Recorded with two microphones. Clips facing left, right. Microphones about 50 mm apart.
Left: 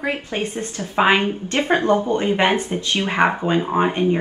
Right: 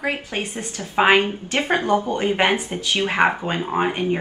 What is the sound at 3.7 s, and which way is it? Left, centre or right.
Speech, centre.